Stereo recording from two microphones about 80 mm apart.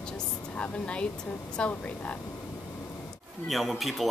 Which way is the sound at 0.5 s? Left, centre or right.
Centre.